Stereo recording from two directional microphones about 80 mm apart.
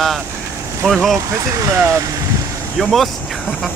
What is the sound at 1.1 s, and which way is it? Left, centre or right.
Speech, right.